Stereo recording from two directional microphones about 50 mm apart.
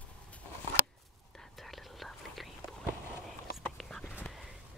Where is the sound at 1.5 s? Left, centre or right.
Centre.